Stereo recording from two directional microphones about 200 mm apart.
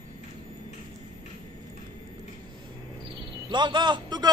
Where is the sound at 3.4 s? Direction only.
20° right (ahead or behind).